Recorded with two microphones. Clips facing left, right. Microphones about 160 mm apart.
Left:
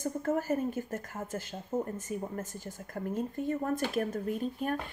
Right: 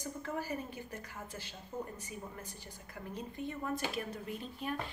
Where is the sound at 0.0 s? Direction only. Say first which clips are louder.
Left 9 dB; 45° left (ahead or behind).